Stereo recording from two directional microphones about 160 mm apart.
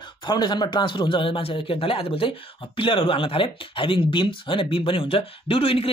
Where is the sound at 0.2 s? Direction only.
25° left (ahead or behind).